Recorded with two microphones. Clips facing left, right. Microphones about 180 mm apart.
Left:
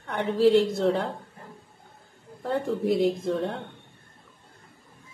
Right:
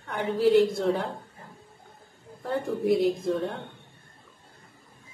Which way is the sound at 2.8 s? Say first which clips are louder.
Right 2 dB; centre (ahead or behind).